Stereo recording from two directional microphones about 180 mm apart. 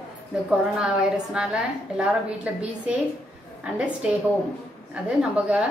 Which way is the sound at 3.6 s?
5° right (ahead or behind).